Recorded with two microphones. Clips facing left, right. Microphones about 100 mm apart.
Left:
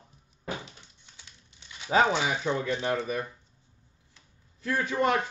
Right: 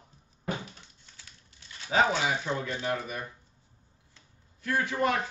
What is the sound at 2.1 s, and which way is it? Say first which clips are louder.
Speech: left 2 dB; 25° left (ahead or behind).